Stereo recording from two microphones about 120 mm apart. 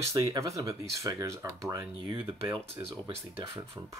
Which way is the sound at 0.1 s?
30° right (ahead or behind).